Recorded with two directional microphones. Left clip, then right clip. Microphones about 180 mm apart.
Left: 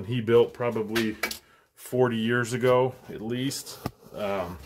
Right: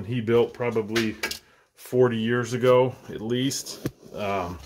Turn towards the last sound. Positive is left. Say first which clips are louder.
# right 2 dB
turn(degrees=-20)  # may be behind; listen again after turning